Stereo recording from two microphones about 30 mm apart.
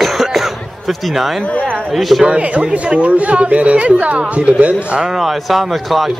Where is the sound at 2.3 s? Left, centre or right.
Right.